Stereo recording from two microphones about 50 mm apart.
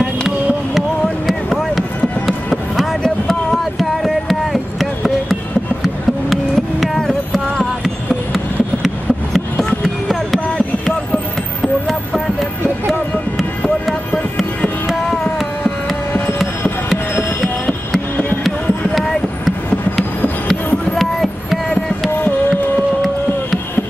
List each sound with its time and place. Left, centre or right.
0.7 s a sound: centre
6.3 s music: centre
8.8 s a sound: centre
11.9 s music: centre
14.9 s music: centre
20.4 s music: centre